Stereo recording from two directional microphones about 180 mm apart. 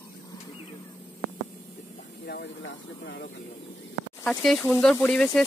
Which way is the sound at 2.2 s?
70° left (ahead or behind).